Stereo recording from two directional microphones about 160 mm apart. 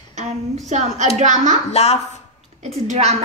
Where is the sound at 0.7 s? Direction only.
45° right (ahead or behind).